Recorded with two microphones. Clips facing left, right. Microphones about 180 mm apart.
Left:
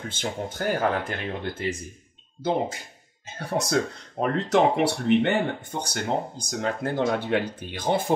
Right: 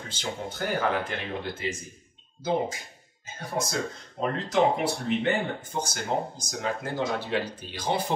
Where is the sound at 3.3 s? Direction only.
70° left (ahead or behind).